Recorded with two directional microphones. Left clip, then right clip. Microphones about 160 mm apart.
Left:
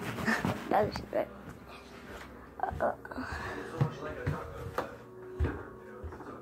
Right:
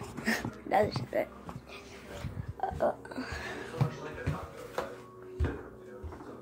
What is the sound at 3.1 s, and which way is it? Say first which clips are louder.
Whispering: even; 15° right (ahead or behind).